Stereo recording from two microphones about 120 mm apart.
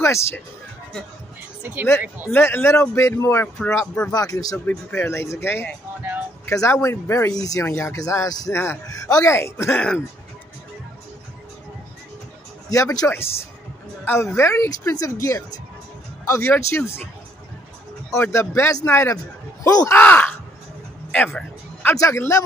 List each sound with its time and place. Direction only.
0.0 s speech: 25° left (ahead or behind)
1.6 s speech: 15° right (ahead or behind)
2.2 s speech: 20° left (ahead or behind)
4.6 s speech: 15° left (ahead or behind)
12.6 s speech: 30° left (ahead or behind)
18.1 s speech: 25° left (ahead or behind)
19.9 s speech: 15° left (ahead or behind)
21.1 s music: 15° left (ahead or behind)
21.9 s speech: 25° left (ahead or behind)